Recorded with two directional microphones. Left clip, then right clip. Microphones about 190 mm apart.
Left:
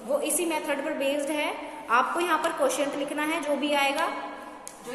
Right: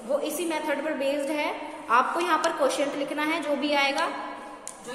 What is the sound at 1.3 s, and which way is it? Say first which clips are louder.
A woman's voice: right 1 dB; 5° right (ahead or behind).